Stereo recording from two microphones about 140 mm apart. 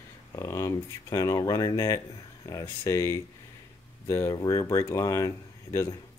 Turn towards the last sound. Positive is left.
turn(degrees=20)  # may be behind; listen again after turning